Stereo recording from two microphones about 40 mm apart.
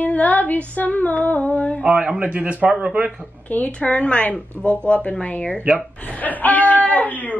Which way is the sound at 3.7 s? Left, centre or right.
Left.